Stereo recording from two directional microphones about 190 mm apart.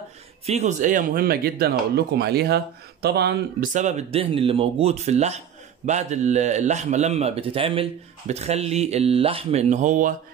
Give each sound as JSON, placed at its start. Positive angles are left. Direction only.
{"t": 0.5, "sound": "speech", "side_deg": -40}
{"t": 3.7, "sound": "speech", "side_deg": -40}